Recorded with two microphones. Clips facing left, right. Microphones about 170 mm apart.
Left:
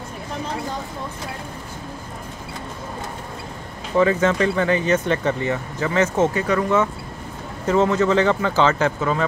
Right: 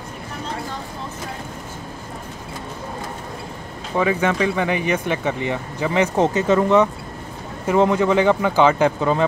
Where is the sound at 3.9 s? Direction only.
15° right (ahead or behind).